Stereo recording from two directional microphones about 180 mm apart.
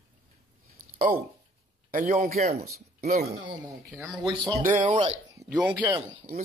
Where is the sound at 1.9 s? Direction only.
50° right (ahead or behind).